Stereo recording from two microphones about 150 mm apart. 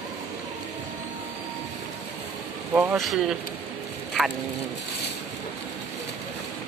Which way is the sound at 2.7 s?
10° right (ahead or behind).